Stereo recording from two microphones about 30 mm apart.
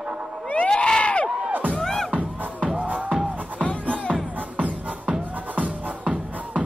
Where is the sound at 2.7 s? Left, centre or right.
Right.